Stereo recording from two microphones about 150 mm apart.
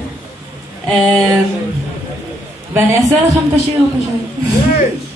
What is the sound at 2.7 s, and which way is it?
Speech, 20° right (ahead or behind).